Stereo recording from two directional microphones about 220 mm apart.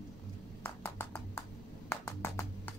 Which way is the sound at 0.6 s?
10° left (ahead or behind).